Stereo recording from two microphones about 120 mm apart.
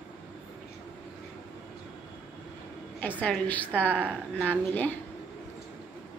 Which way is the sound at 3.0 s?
15° left (ahead or behind).